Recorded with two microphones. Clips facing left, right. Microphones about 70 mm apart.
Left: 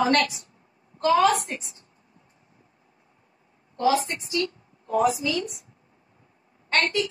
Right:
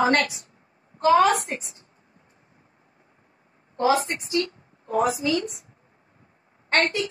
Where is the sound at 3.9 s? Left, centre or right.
Right.